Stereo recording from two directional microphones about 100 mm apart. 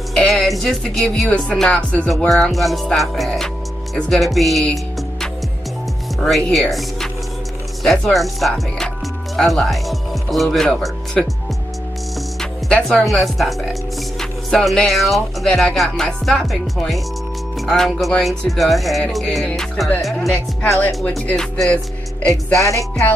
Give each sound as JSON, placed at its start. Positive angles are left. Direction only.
{"t": 0.1, "sound": "speech", "side_deg": 5}
{"t": 6.1, "sound": "speech", "side_deg": 0}
{"t": 12.4, "sound": "speech", "side_deg": 5}
{"t": 22.6, "sound": "music", "side_deg": 30}